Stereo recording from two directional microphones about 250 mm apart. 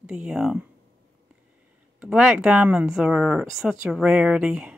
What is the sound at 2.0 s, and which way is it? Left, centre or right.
Speech, centre.